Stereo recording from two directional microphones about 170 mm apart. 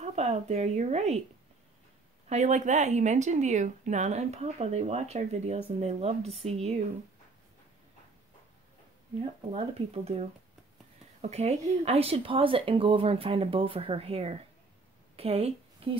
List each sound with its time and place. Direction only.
0.0 s speech: 40° right (ahead or behind)
2.2 s speech: 45° right (ahead or behind)
9.2 s a woman's voice: 35° right (ahead or behind)